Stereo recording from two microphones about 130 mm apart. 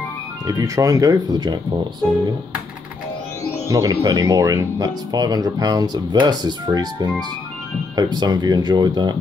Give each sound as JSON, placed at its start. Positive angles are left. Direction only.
{"t": 0.5, "sound": "speech", "side_deg": -25}
{"t": 3.6, "sound": "speech", "side_deg": -25}